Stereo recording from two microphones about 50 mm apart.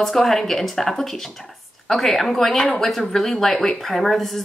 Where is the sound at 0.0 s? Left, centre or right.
Centre.